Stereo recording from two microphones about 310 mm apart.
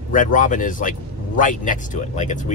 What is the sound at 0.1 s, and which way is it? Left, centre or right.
Speech, left.